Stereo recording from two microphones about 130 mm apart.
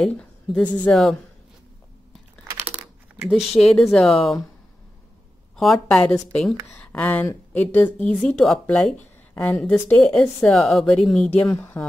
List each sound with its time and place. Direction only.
0.0 s a woman's voice: 5° left (ahead or behind)
3.3 s speech: centre (ahead or behind)
5.6 s speech: centre (ahead or behind)
11.3 s speech: 20° left (ahead or behind)